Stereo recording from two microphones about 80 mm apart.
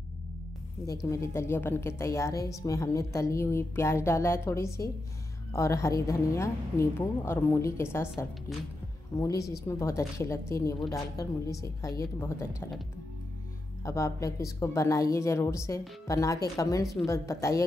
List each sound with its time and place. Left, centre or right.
0.8 s a woman's voice: left
9.2 s a woman's voice: left
13.8 s a woman's voice: left